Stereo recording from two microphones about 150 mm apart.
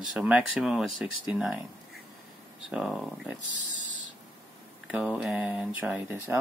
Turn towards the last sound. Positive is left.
turn(degrees=-15)  # may be behind; listen again after turning